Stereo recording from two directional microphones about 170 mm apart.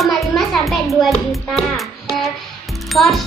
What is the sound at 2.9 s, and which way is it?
Speech, centre (ahead or behind).